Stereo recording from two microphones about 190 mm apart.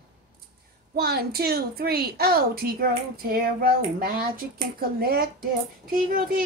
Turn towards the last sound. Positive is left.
turn(degrees=-45)  # may be behind; listen again after turning